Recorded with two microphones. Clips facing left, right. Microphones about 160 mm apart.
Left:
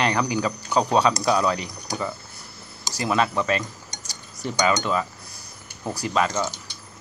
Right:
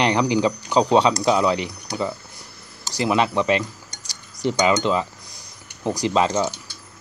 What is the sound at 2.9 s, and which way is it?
Speech, 20° right (ahead or behind).